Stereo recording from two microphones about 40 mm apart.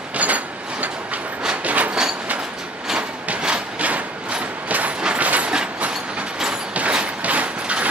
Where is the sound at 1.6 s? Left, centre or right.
Right.